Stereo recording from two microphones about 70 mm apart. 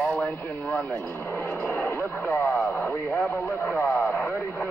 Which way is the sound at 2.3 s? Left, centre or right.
Left.